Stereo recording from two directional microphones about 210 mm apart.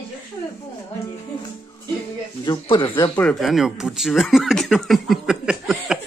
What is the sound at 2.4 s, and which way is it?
Speech, 20° left (ahead or behind).